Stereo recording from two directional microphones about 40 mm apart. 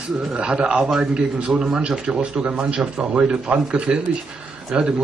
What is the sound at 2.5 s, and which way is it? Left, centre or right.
Speech, right.